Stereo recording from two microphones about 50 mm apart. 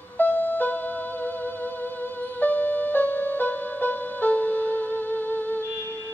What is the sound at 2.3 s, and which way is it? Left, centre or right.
Music, left.